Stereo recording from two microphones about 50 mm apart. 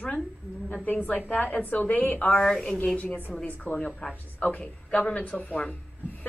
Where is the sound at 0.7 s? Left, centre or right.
Left.